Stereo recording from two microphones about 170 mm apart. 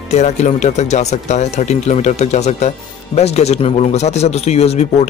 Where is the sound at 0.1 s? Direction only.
40° left (ahead or behind).